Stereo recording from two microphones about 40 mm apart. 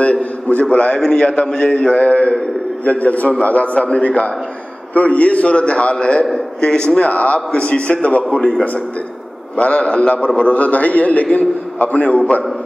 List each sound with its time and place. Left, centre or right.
0.0 s a man's voice: left
7.1 s a man's voice: left
9.6 s a man's voice: left